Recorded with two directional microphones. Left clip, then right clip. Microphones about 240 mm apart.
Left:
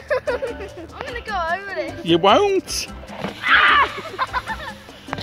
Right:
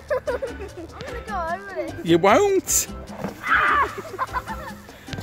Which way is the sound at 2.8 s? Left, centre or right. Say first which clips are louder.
Left 3 dB; centre.